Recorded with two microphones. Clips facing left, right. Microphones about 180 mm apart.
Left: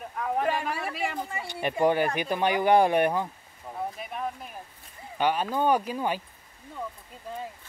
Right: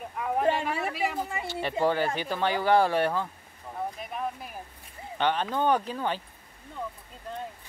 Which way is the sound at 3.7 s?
Centre (ahead or behind).